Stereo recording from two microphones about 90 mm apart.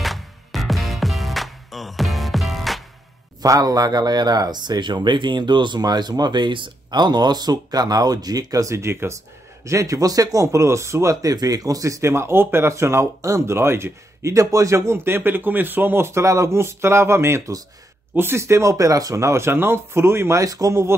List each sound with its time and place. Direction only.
0.0 s music: centre (ahead or behind)
3.4 s speech: 45° right (ahead or behind)